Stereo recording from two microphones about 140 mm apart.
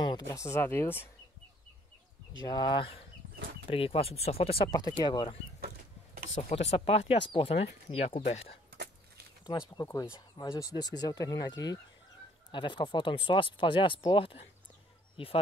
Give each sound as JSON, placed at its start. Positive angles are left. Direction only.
{"t": 0.0, "sound": "a sound", "side_deg": 30}
{"t": 0.3, "sound": "speech", "side_deg": 20}
{"t": 2.4, "sound": "speech", "side_deg": 35}
{"t": 4.6, "sound": "speech", "side_deg": 30}
{"t": 6.3, "sound": "speech", "side_deg": 50}
{"t": 9.5, "sound": "speech", "side_deg": 25}